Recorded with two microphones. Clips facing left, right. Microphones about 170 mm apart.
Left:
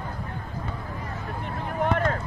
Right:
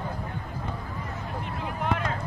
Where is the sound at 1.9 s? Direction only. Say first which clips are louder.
Left 4 dB; 45° left (ahead or behind).